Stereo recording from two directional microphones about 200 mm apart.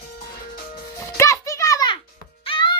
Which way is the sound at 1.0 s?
15° left (ahead or behind).